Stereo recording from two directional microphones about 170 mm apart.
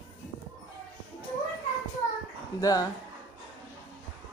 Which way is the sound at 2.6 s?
20° left (ahead or behind).